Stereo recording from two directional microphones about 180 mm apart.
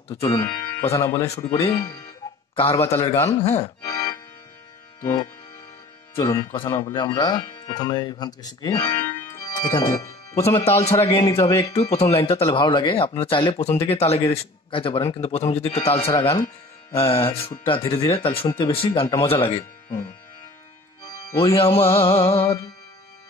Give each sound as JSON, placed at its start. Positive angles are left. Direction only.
{"t": 0.1, "sound": "speech", "side_deg": 25}
{"t": 0.9, "sound": "speech", "side_deg": 15}
{"t": 1.3, "sound": "speech", "side_deg": 35}
{"t": 3.1, "sound": "speech", "side_deg": 15}
{"t": 3.6, "sound": "music", "side_deg": 20}
{"t": 5.0, "sound": "speech", "side_deg": 20}
{"t": 6.4, "sound": "speech", "side_deg": 30}
{"t": 10.6, "sound": "speech", "side_deg": 35}
{"t": 11.1, "sound": "speech", "side_deg": 15}
{"t": 11.7, "sound": "speech", "side_deg": 35}
{"t": 21.3, "sound": "speech", "side_deg": 30}